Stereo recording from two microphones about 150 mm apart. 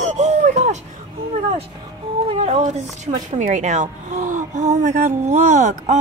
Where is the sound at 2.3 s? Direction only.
45° right (ahead or behind).